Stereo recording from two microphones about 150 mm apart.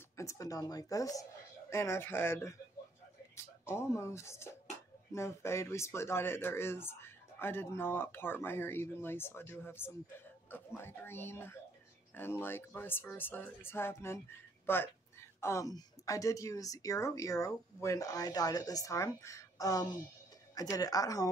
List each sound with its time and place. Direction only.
0.2 s speech: 20° left (ahead or behind)
3.6 s speech: 15° left (ahead or behind)